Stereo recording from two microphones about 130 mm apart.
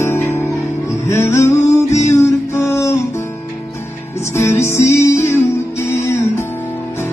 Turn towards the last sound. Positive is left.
turn(degrees=20)  # may be behind; listen again after turning